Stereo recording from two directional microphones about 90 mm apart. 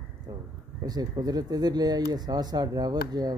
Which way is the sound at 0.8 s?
50° right (ahead or behind).